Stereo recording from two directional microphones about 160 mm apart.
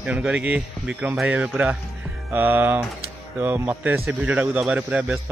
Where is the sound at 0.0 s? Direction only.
5° right (ahead or behind).